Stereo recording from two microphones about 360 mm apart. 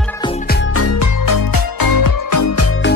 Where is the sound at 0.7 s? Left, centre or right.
Left.